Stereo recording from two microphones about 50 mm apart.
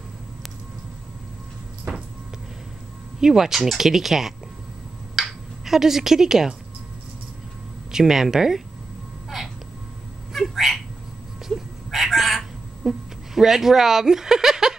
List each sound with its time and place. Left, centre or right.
1.9 s a sound: right
3.2 s speech: centre
5.1 s a sound: centre
7.9 s speech: centre
10.3 s cat: centre
11.4 s fowl: centre